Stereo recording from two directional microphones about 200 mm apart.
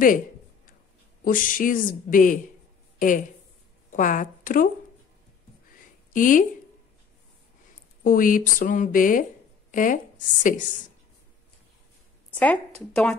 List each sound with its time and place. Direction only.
1.2 s speech: 45° left (ahead or behind)
6.1 s speech: 40° left (ahead or behind)
8.0 s speech: 45° left (ahead or behind)
12.3 s a sound: 5° left (ahead or behind)
12.9 s speech: 5° left (ahead or behind)